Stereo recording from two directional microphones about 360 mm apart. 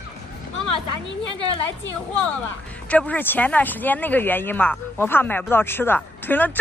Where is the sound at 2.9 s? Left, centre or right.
Centre.